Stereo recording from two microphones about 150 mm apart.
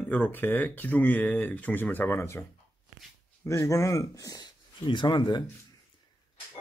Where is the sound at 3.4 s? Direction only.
20° left (ahead or behind).